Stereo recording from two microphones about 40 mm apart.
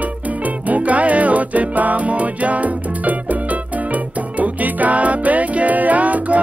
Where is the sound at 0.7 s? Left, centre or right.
Right.